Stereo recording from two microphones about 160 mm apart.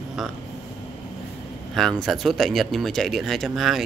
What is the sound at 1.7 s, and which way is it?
Speech, centre (ahead or behind).